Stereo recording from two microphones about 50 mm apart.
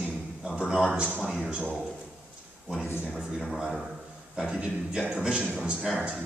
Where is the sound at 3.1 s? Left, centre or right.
Centre.